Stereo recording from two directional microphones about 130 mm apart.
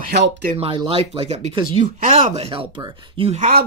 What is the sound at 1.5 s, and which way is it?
Speech, 45° right (ahead or behind).